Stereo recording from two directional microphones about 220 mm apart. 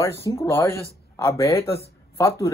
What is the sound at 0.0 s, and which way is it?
A woman's voice, 10° left (ahead or behind).